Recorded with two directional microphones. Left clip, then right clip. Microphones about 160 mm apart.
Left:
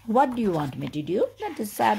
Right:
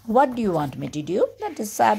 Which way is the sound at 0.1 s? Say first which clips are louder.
Right 3 dB; 10° right (ahead or behind).